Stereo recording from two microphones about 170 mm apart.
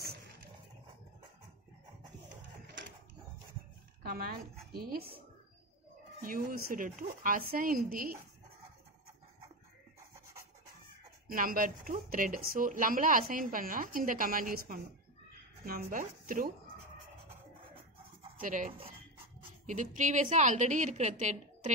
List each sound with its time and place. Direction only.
4.0 s a sound: 65° right (ahead or behind)
4.7 s speech: 65° right (ahead or behind)
6.2 s speech: 55° right (ahead or behind)
11.2 s speech: 55° right (ahead or behind)
18.4 s a woman's voice: 50° right (ahead or behind)